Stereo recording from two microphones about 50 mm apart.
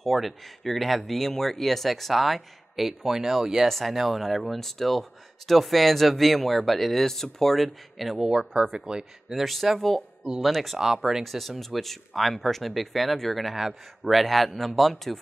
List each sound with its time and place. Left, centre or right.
0.0 s speech: centre
8.7 s speech: centre
9.3 s speech: centre
10.8 s speech: centre
11.2 s speech: centre